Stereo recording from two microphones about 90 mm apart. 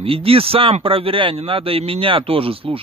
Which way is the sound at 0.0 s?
90° right.